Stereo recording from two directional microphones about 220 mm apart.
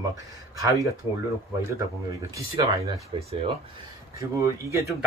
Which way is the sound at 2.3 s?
15° right (ahead or behind).